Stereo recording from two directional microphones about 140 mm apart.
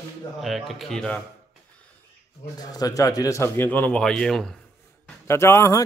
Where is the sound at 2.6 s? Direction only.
25° left (ahead or behind); by 4.5 s 5° left (ahead or behind).